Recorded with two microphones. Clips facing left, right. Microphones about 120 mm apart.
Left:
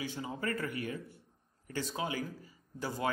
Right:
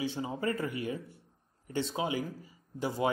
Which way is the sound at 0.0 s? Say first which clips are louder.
Right 4 dB; 25° right (ahead or behind).